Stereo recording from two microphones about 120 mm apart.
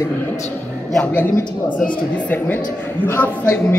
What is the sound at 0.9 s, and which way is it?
A woman's voice, 10° left (ahead or behind).